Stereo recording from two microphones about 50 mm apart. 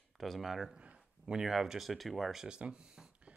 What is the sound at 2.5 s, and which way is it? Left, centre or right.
Speech, centre.